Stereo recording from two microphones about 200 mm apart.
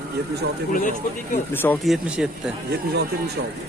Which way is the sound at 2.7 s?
55° right (ahead or behind).